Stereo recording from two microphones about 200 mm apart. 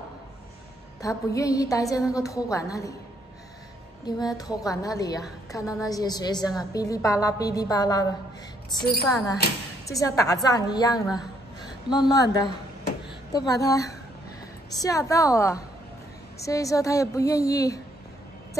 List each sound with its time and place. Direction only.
1.0 s a woman's voice: 15° left (ahead or behind)
4.0 s a woman's voice: 20° left (ahead or behind)